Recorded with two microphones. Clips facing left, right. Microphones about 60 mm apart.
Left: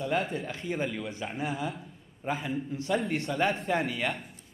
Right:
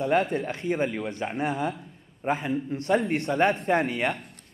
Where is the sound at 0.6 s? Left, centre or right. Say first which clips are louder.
Right 4 dB; centre.